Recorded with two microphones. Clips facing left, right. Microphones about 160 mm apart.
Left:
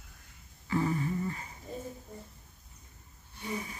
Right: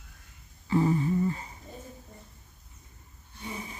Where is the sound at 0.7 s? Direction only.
25° right (ahead or behind).